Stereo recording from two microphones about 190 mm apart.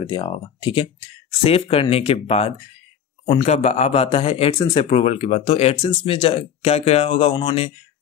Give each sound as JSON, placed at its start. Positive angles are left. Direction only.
{"t": 0.0, "sound": "speech", "side_deg": 25}